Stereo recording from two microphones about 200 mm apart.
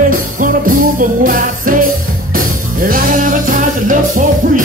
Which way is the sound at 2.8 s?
40° right (ahead or behind).